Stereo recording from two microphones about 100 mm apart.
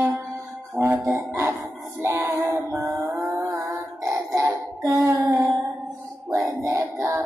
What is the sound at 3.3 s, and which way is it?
Music, 35° right (ahead or behind).